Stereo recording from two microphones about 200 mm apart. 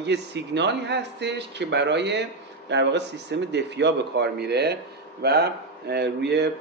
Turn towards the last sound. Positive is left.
turn(degrees=-55)  # may be behind; listen again after turning